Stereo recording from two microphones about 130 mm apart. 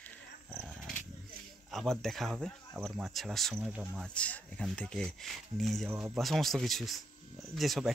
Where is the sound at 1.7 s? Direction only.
Centre (ahead or behind).